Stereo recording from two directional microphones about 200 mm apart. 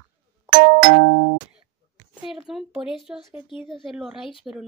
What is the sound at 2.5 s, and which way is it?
Speech, centre (ahead or behind).